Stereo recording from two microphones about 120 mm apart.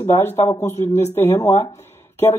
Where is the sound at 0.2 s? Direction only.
20° left (ahead or behind).